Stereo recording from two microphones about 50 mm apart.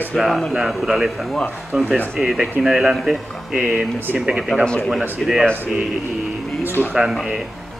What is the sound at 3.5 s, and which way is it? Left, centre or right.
Speech, right.